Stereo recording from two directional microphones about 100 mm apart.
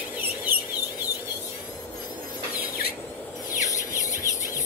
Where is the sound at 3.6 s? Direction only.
35° left (ahead or behind).